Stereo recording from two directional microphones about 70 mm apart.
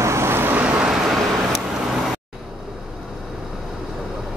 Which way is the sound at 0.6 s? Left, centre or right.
Centre.